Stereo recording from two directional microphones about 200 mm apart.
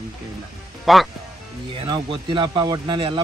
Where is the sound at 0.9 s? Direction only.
Centre (ahead or behind).